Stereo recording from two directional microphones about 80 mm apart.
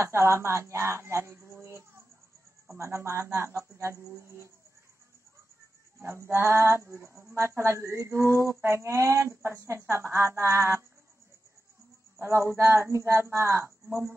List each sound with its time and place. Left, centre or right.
0.0 s speech: right
6.0 s speech: right
12.2 s speech: right